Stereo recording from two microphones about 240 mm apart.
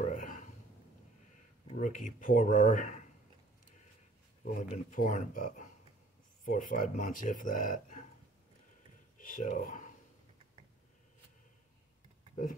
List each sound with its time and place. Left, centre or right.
0.0 s a sound: left
1.7 s speech: left
4.6 s speech: left
9.2 s speech: left